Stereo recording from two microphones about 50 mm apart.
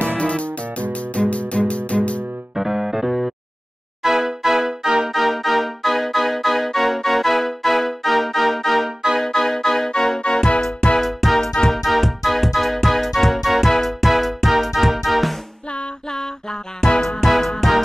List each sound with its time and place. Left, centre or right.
0.2 s music: left
2.5 s music: centre
11.0 s music: centre
16.8 s music: centre